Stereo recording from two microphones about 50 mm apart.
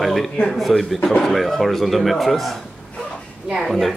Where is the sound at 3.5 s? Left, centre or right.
Centre.